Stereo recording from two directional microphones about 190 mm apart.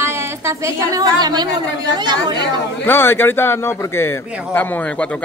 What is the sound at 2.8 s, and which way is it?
Speech, 10° left (ahead or behind).